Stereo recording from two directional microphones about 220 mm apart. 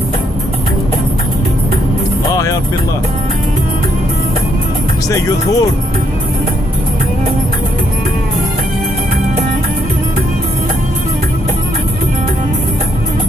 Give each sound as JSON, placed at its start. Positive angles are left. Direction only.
{"t": 5.1, "sound": "speech", "side_deg": 15}